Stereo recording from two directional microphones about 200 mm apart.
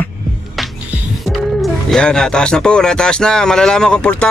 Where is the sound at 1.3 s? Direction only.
Centre (ahead or behind).